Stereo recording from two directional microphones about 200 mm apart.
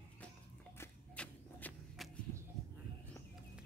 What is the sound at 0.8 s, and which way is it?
Shuffle, 5° left (ahead or behind).